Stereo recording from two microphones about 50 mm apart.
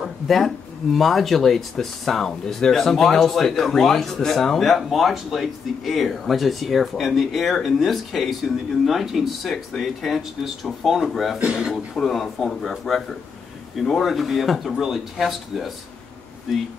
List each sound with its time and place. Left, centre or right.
0.0 s a sound: centre
0.9 s speech: centre
11.3 s speech: centre
12.0 s speech: centre